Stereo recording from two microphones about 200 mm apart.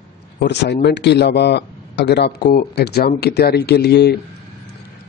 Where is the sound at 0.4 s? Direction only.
60° left (ahead or behind).